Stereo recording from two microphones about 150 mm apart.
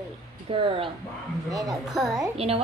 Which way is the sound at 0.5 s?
35° right (ahead or behind).